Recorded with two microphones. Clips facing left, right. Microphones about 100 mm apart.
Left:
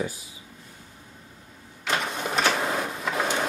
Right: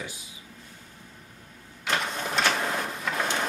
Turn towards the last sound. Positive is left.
turn(degrees=5)  # may be behind; listen again after turning